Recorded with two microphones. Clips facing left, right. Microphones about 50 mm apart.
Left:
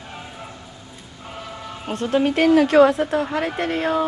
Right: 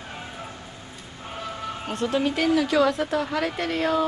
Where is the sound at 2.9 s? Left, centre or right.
Left.